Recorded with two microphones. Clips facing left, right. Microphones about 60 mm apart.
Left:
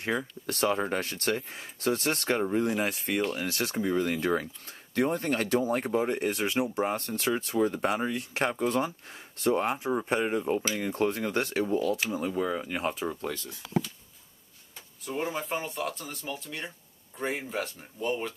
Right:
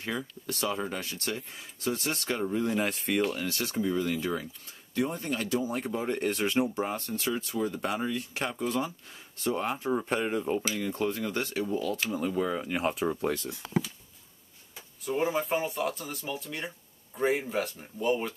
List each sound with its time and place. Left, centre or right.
0.0 s speech: left
0.5 s speech: left
2.6 s speech: centre
3.4 s speech: left
5.9 s speech: centre
7.0 s speech: left
7.9 s speech: left
9.5 s speech: left
9.8 s speech: centre
10.8 s speech: left
12.0 s speech: centre
15.0 s speech: centre